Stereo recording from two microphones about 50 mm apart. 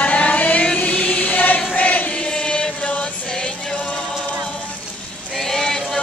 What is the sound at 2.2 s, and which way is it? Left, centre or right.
Chant, centre.